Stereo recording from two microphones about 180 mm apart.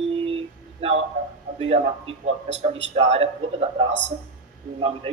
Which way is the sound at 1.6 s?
35° right (ahead or behind).